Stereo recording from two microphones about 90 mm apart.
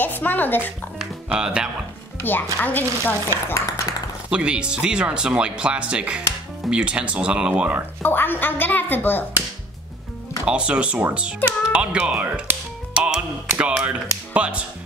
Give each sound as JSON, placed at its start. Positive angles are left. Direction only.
{"t": 0.0, "sound": "speech", "side_deg": 20}
{"t": 1.3, "sound": "speech", "side_deg": -10}
{"t": 2.2, "sound": "speech", "side_deg": 20}
{"t": 4.3, "sound": "speech", "side_deg": -10}
{"t": 8.0, "sound": "speech", "side_deg": 20}
{"t": 10.4, "sound": "speech", "side_deg": -10}